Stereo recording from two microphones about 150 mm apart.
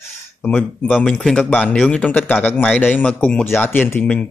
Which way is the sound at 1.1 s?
10° left (ahead or behind).